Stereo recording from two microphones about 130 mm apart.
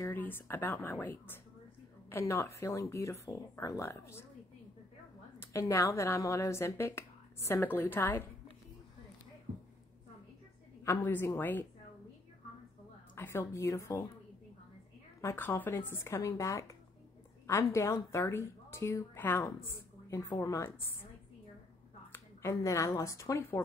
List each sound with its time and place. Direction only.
0.0 s a woman's voice: 15° left (ahead or behind)
5.4 s a woman's voice: 20° left (ahead or behind)
10.8 s a woman's voice: 15° left (ahead or behind)
13.1 s a woman's voice: 15° left (ahead or behind)
15.2 s a woman's voice: 15° left (ahead or behind)
22.1 s speech: 20° left (ahead or behind)